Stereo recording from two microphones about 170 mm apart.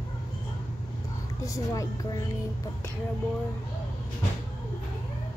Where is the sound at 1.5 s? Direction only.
20° left (ahead or behind).